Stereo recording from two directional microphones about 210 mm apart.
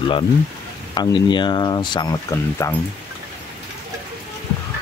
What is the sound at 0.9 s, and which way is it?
Speech, 20° left (ahead or behind).